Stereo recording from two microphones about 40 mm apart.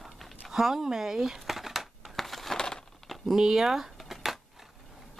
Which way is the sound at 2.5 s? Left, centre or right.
Centre.